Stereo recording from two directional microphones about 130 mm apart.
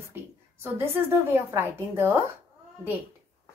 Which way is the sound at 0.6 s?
20° right (ahead or behind).